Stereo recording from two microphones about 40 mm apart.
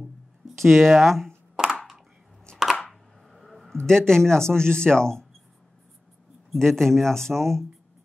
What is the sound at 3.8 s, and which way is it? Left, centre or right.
Speech, centre.